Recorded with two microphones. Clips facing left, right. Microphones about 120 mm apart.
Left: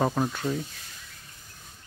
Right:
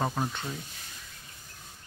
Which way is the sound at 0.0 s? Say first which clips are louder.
Left 5 dB; 5° left (ahead or behind).